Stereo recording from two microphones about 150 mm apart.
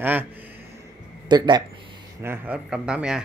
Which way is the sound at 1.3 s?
30° right (ahead or behind).